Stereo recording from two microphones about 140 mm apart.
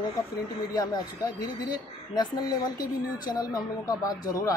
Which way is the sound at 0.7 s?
25° left (ahead or behind).